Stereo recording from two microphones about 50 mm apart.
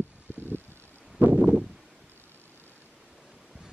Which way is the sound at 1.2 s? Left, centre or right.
Right.